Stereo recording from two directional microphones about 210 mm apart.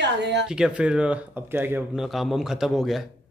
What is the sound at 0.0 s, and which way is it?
Speech, 55° right (ahead or behind).